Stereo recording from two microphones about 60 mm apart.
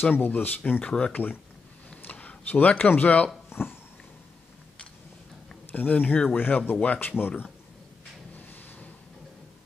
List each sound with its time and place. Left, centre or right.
0.0 s speech: left
0.8 s speech: centre
1.1 s speech: left
5.7 s speech: left
7.2 s speech: left
8.4 s a sound: left